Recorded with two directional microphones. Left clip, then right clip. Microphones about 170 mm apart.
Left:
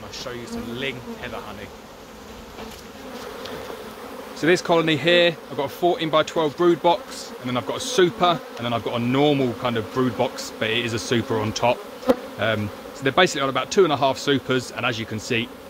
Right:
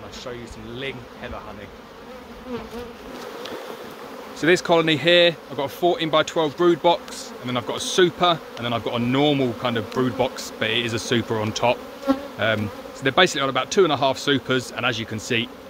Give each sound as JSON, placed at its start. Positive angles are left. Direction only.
{"t": 4.4, "sound": "speech", "side_deg": -20}